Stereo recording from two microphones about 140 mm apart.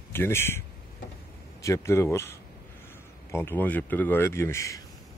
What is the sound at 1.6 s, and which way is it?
Speech, 20° left (ahead or behind).